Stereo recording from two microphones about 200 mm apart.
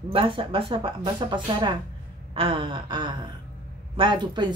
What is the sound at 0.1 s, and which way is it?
Speech, 25° right (ahead or behind).